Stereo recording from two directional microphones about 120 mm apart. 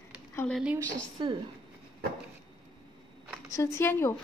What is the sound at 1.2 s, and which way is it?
Speech, 45° right (ahead or behind).